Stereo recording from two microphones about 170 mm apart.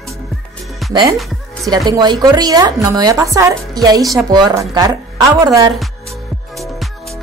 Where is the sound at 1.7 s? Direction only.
25° right (ahead or behind).